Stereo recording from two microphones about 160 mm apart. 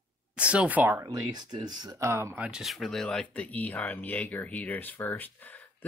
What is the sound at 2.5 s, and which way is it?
Speech, centre (ahead or behind).